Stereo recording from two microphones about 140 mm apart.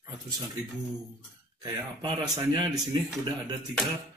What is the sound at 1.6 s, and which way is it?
Speech, 30° right (ahead or behind).